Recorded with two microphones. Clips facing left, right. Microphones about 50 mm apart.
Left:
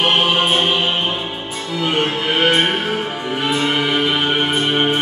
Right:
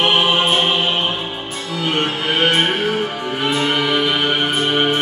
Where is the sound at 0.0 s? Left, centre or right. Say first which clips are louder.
Even; centre.